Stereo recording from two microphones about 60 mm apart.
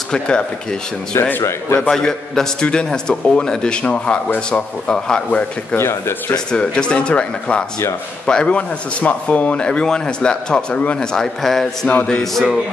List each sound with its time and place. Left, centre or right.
0.1 s speech: centre
1.8 s speech: centre
5.8 s speech: left
6.5 s speech: centre